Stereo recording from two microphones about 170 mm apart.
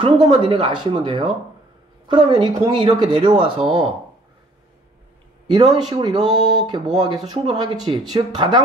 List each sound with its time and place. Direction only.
0.0 s speech: 30° right (ahead or behind)
5.5 s speech: 25° right (ahead or behind)